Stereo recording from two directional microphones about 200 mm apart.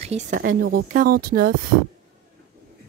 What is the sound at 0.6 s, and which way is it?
Speech, 55° right (ahead or behind).